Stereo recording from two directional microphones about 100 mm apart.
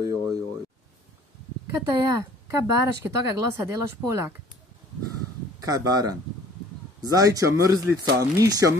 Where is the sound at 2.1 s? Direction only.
30° right (ahead or behind).